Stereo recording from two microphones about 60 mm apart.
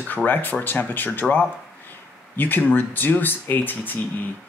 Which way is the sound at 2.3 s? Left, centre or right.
Left.